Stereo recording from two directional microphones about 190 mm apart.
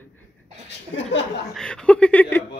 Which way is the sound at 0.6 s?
70° left (ahead or behind).